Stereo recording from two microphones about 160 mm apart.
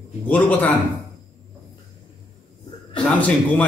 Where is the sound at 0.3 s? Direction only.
10° left (ahead or behind).